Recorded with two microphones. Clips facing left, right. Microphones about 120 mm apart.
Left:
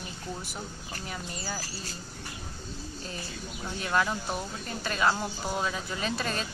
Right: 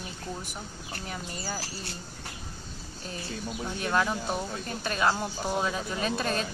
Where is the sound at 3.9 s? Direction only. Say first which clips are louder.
Even; 10° right (ahead or behind).